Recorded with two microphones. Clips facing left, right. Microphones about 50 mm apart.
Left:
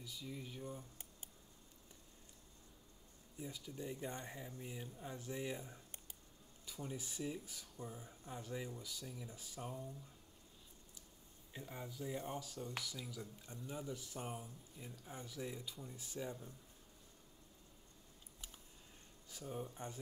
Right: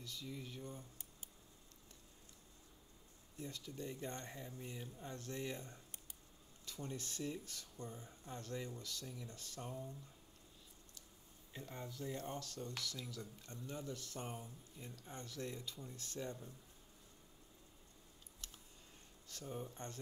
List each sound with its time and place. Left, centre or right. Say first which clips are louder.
0.0 s speech: even; centre
3.3 s speech: even; centre
11.5 s speech: even; centre
18.4 s a sound: even; centre
19.2 s speech: left 1 dB; centre